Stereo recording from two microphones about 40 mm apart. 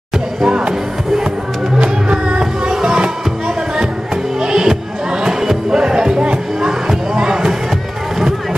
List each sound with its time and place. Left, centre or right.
0.5 s music: right
1.8 s music: right
2.6 s music: centre